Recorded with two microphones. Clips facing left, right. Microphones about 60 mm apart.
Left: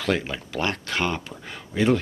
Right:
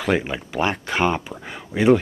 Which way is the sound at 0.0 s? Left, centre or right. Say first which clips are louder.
Right 3 dB; centre.